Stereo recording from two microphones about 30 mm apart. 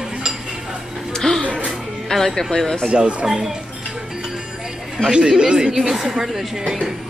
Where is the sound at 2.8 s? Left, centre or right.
Right.